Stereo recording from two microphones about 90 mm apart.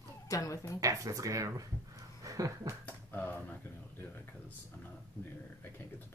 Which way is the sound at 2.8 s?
20° left (ahead or behind).